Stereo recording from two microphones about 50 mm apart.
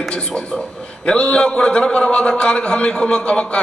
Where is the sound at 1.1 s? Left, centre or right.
Centre.